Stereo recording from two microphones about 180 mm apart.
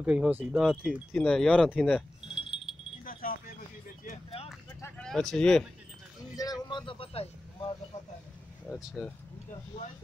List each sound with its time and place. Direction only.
0.0 s speech: 5° right (ahead or behind)
3.1 s a sound: 50° left (ahead or behind)
4.8 s speech: 5° left (ahead or behind)
6.3 s speech: 20° left (ahead or behind)
8.6 s speech: centre (ahead or behind)